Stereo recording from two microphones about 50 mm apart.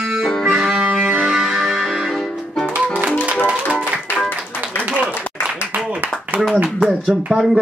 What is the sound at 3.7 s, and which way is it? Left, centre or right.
Music, centre.